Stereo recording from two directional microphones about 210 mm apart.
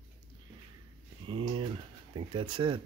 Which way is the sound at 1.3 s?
25° right (ahead or behind).